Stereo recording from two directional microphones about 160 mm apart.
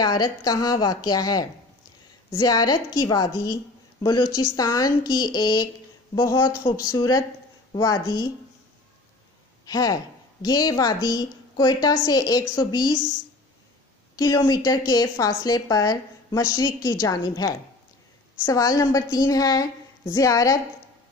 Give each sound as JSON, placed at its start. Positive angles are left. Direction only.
{"t": 0.0, "sound": "a woman's voice", "side_deg": 25}
{"t": 9.7, "sound": "a woman's voice", "side_deg": 25}
{"t": 14.1, "sound": "a woman's voice", "side_deg": 25}